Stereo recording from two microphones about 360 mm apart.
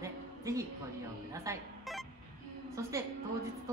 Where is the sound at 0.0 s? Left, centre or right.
Centre.